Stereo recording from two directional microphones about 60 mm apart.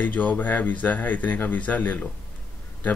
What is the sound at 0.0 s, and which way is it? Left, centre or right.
Speech, left.